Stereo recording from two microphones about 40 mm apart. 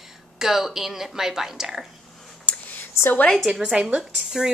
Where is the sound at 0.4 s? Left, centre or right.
Centre.